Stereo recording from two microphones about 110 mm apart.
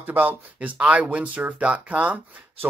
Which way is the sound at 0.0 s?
15° right (ahead or behind).